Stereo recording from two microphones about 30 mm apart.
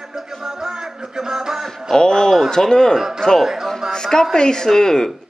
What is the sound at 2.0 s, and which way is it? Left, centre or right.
A man's voice, centre.